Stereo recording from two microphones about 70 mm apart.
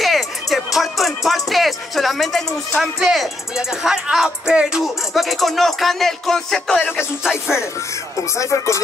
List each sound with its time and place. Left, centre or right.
0.0 s music: centre
0.7 s speech: centre
6.9 s music: centre
8.4 s speech: left